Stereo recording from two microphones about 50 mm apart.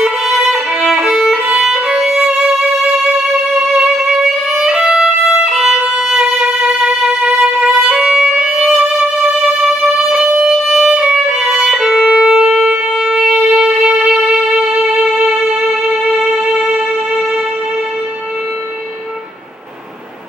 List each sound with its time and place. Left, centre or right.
0.0 s violin: centre
4.6 s music: centre
5.9 s violin: centre
8.5 s music: centre
10.0 s music: centre
14.7 s music: centre
15.6 s music: centre